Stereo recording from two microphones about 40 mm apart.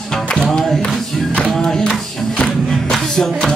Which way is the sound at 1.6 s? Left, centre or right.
Centre.